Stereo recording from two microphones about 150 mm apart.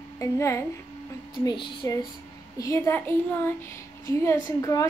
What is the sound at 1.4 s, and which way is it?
Speech, 30° left (ahead or behind).